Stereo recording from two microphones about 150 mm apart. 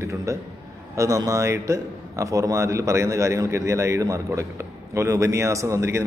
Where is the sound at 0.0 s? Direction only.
20° right (ahead or behind).